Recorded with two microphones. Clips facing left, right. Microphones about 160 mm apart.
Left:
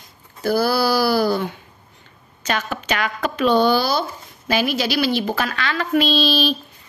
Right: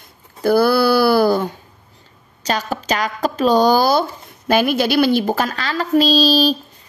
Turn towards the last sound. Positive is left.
turn(degrees=-40)  # may be behind; listen again after turning